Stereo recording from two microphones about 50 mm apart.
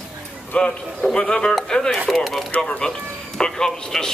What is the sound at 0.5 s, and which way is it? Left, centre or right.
Speech, left.